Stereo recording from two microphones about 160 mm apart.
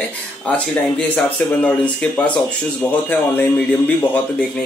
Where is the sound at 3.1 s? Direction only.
10° left (ahead or behind).